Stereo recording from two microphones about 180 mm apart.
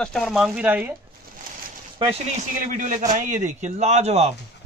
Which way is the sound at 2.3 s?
45° right (ahead or behind).